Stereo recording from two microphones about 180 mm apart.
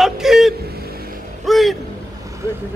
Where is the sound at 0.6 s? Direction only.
60° right (ahead or behind).